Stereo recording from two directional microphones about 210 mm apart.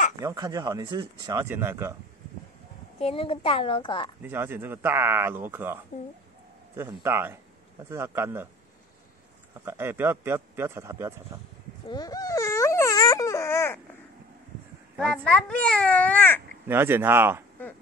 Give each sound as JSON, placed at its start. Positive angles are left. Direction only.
{"t": 0.2, "sound": "speech", "side_deg": -15}
{"t": 3.0, "sound": "a child's voice", "side_deg": 25}
{"t": 4.2, "sound": "speech", "side_deg": -10}
{"t": 7.0, "sound": "speech", "side_deg": -10}
{"t": 9.7, "sound": "speech", "side_deg": -10}
{"t": 11.9, "sound": "wail", "side_deg": 20}
{"t": 15.0, "sound": "speech", "side_deg": 5}
{"t": 16.6, "sound": "speech", "side_deg": -10}